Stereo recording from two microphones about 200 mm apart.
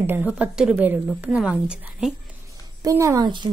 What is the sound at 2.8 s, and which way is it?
Speech, 15° right (ahead or behind).